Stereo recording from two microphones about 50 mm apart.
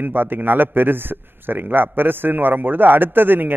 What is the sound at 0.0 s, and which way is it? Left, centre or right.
A man's voice, right.